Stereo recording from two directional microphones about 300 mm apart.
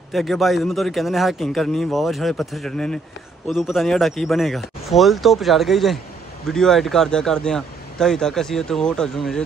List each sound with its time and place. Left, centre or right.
0.1 s a man's voice: centre